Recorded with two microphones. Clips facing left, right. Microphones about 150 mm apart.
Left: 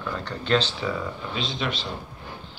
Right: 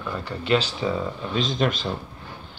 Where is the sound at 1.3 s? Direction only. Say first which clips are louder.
Right 7 dB; 45° right (ahead or behind).